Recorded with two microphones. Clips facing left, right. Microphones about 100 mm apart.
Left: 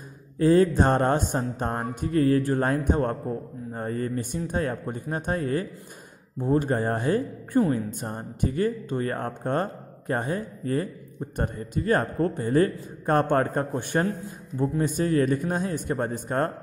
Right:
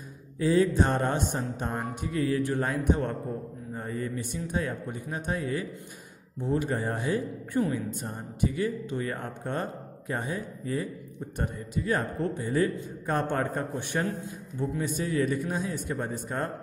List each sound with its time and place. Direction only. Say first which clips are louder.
0.4 s speech: left 4 dB; 50° left (ahead or behind)